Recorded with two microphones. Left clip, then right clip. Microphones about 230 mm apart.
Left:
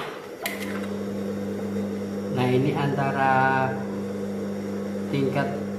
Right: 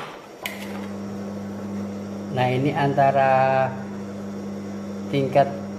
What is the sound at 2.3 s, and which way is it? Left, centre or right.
Mantra, right.